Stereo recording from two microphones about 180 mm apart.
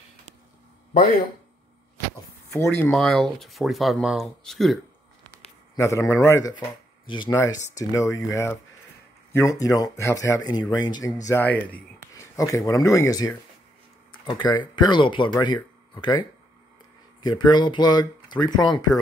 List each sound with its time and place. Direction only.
2.5 s speech: 15° left (ahead or behind)
5.8 s speech: 15° left (ahead or behind)